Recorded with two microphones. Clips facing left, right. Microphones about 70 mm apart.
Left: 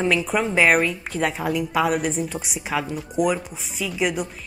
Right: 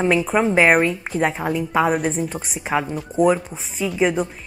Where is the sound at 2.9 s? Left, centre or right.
Right.